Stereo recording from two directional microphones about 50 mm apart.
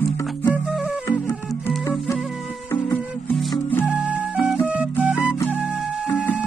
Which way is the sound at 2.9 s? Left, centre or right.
Left.